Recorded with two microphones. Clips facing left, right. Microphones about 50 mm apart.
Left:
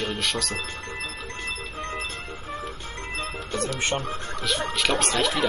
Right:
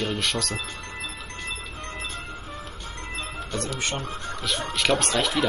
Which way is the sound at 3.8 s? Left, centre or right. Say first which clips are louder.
Left 3 dB; left.